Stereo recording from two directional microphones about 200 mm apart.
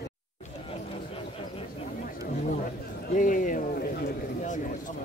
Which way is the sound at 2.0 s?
40° left (ahead or behind).